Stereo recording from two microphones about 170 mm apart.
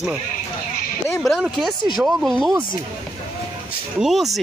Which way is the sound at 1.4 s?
Centre (ahead or behind).